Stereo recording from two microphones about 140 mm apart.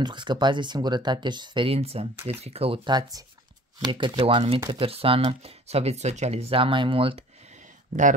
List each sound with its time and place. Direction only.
0.0 s speech: 35° right (ahead or behind)